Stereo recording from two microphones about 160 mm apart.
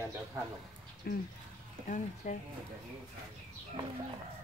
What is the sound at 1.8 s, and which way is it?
Speech, 55° left (ahead or behind).